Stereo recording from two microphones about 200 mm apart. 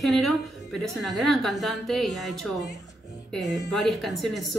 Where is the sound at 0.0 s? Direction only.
Centre (ahead or behind).